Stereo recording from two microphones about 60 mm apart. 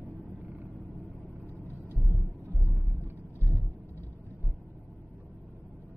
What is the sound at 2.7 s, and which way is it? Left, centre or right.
Vehicle, right.